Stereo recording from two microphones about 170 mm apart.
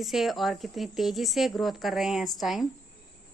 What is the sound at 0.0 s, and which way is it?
A woman's voice, centre (ahead or behind).